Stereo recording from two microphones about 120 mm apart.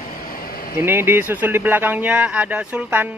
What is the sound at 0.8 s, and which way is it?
Speech, 15° right (ahead or behind).